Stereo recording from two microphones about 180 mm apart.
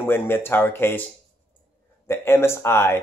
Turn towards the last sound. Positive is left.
turn(degrees=15)  # may be behind; listen again after turning